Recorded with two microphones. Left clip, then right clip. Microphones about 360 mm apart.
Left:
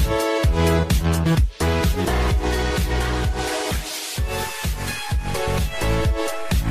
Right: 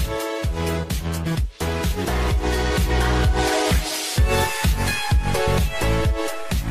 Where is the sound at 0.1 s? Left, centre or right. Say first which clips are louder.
Left 6 dB; left.